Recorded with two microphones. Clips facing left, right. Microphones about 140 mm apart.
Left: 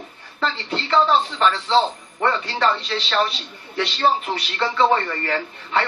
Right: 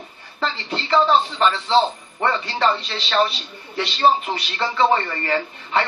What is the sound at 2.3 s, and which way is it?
Speech, centre (ahead or behind).